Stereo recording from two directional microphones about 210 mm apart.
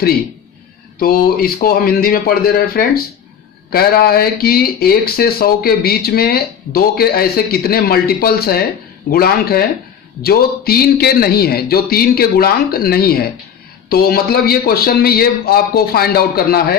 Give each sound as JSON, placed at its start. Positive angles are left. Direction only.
{"t": 0.9, "sound": "speech", "side_deg": 45}